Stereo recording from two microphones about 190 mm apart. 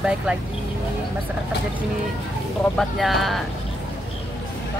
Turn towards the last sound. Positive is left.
turn(degrees=0)  # may be behind; listen again after turning